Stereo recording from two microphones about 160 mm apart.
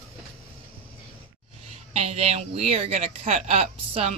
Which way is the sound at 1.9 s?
45° right (ahead or behind).